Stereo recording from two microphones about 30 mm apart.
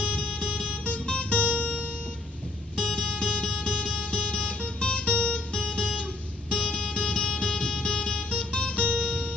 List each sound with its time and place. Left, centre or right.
0.0 s music: left
2.8 s music: left